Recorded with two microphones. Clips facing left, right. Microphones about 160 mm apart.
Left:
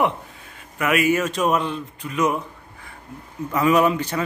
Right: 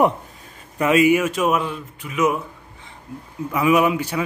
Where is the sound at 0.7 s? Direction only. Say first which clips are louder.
Right 4 dB; 25° right (ahead or behind).